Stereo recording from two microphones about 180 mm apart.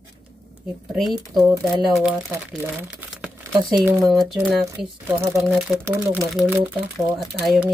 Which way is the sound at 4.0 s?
Centre (ahead or behind).